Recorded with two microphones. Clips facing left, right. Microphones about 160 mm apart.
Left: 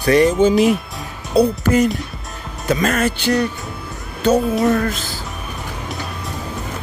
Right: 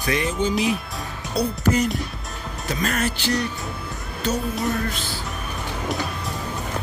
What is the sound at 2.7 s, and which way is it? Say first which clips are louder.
Speech: left 7 dB; 80° left.